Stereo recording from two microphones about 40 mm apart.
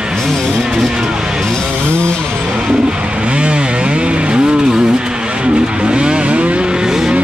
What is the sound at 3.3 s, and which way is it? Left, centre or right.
Vehicle, right.